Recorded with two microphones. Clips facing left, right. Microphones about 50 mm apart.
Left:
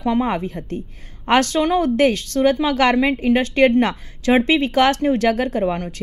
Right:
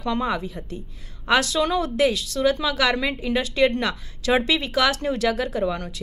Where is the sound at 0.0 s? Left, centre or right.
Left.